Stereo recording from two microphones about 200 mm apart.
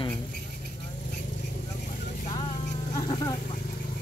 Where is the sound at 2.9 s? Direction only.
20° left (ahead or behind).